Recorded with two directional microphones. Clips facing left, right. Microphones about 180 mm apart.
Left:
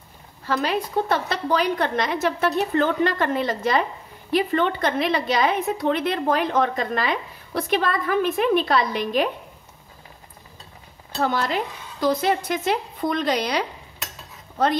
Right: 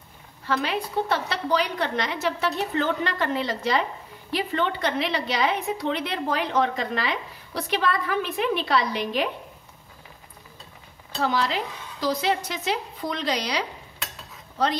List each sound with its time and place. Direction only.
0.5 s a woman's voice: 45° left (ahead or behind)
11.1 s a woman's voice: 50° left (ahead or behind)